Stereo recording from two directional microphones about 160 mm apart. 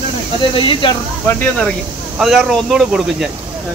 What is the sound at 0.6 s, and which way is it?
Speech, 30° left (ahead or behind).